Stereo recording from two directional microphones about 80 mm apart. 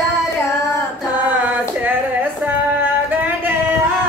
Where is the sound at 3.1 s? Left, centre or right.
Right.